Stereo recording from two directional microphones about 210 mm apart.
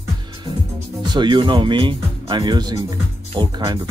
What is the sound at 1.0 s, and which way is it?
Speech, 20° right (ahead or behind).